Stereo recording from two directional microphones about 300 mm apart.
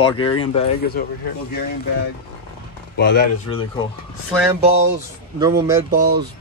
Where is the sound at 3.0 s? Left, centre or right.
Left.